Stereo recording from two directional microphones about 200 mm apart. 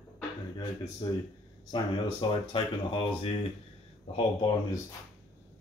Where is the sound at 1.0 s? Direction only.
20° left (ahead or behind).